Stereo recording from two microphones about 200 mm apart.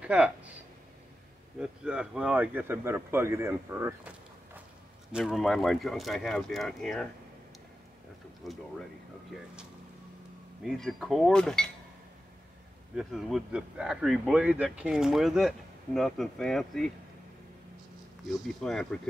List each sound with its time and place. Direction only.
0.0 s speech: 5° right (ahead or behind)
1.6 s speech: 5° right (ahead or behind)
5.1 s speech: centre (ahead or behind)
8.4 s speech: centre (ahead or behind)
10.6 s speech: centre (ahead or behind)
12.9 s speech: 5° right (ahead or behind)
18.3 s speech: centre (ahead or behind)